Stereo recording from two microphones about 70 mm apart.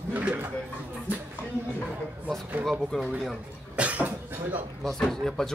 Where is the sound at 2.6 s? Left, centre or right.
Centre.